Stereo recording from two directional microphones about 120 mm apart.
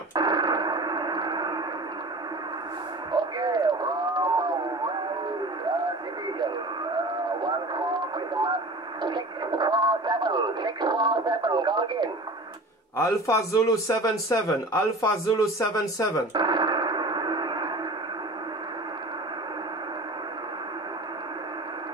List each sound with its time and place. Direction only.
0.1 s radio: 35° right (ahead or behind)
3.1 s radio: 35° right (ahead or behind)
9.0 s radio: 40° right (ahead or behind)
12.9 s a man's voice: 25° left (ahead or behind)
16.3 s radio: 40° right (ahead or behind)